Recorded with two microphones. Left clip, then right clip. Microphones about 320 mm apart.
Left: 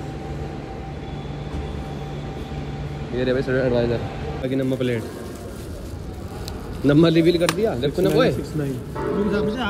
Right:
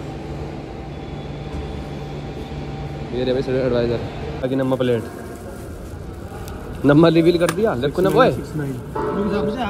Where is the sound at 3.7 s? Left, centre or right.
Centre.